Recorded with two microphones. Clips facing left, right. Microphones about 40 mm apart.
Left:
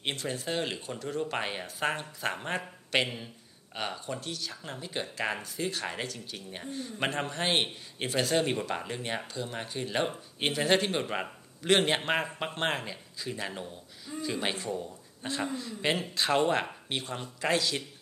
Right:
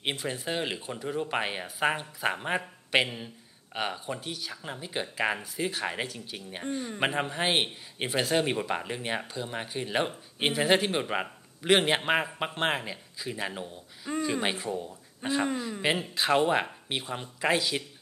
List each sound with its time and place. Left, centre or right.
0.0 s a man's voice: centre
14.1 s a sound: right
14.4 s a man's voice: centre